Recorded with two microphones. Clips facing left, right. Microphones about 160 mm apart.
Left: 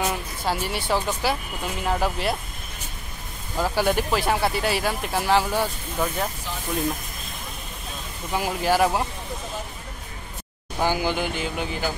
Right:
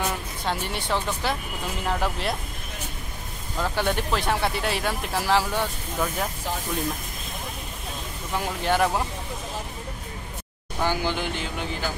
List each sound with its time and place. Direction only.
0.1 s speech: 5° left (ahead or behind)
3.5 s speech: 5° left (ahead or behind)
8.3 s speech: 5° left (ahead or behind)
10.8 s speech: 10° left (ahead or behind)